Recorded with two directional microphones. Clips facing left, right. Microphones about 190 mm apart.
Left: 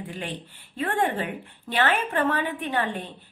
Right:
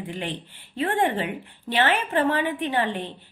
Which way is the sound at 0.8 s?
20° right (ahead or behind).